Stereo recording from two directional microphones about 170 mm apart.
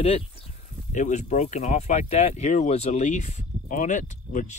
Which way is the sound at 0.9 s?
45° left (ahead or behind).